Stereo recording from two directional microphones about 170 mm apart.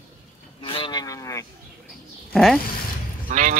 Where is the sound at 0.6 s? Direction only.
30° left (ahead or behind).